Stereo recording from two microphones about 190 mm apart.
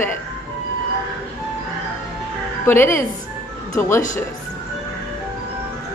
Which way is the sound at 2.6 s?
10° left (ahead or behind).